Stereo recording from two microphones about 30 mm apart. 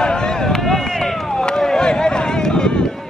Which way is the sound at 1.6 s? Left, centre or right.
Left.